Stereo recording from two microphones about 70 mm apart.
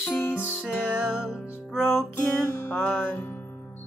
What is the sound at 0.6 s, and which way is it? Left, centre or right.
Music, centre.